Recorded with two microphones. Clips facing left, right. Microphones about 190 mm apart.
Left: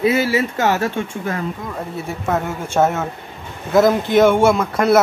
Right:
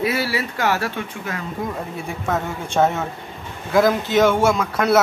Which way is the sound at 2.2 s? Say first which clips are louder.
Left 3 dB; 5° left (ahead or behind).